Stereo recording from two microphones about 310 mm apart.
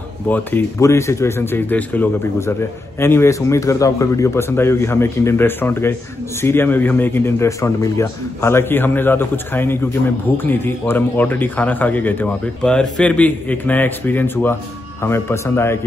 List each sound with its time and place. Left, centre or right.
0.3 s a man's voice: centre